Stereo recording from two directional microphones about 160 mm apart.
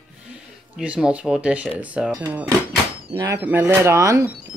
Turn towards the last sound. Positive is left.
turn(degrees=-20)  # may be behind; listen again after turning